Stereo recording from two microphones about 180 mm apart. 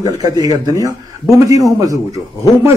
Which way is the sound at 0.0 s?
20° right (ahead or behind).